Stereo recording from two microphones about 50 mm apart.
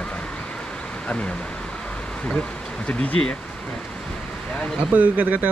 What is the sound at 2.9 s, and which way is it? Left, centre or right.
Speech, left.